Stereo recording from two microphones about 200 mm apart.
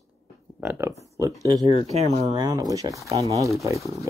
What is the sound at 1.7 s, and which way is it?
Speech, 30° right (ahead or behind).